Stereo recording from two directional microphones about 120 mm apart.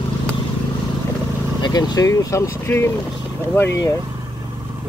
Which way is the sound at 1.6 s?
35° left (ahead or behind).